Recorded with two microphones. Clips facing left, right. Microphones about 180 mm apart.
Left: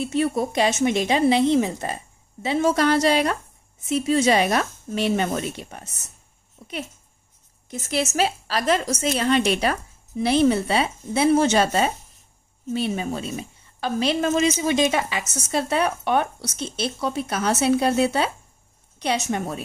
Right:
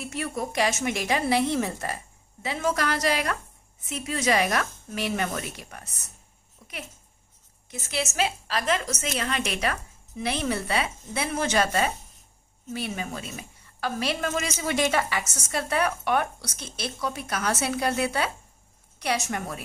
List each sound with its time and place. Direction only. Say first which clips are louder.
0.0 s a woman's voice: left 9 dB; 25° left (ahead or behind)
7.8 s a woman's voice: left 5 dB; 40° left (ahead or behind)